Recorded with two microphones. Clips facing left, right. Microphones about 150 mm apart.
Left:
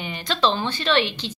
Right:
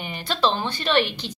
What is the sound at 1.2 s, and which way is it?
Speech, 50° right (ahead or behind).